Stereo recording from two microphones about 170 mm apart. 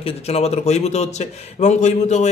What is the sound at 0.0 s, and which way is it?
A man's voice, 35° left (ahead or behind).